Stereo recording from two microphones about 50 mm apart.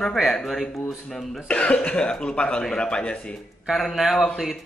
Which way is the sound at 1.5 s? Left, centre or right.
Left.